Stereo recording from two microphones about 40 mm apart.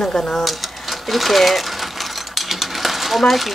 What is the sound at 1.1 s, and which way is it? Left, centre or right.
Speech, centre.